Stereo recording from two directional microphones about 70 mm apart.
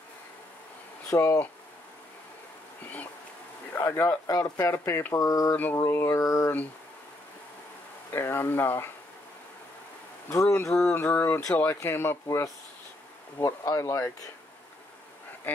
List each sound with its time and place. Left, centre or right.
1.1 s speech: left
3.7 s speech: left
5.1 s a sound: left
5.9 s speech: left
8.1 s speech: left
10.3 s speech: left
13.4 s speech: left
15.5 s speech: left